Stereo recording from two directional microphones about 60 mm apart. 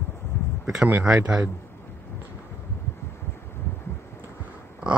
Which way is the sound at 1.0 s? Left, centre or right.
Centre.